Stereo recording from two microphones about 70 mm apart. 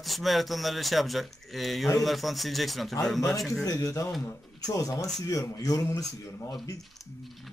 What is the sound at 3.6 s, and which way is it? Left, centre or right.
Speech, left.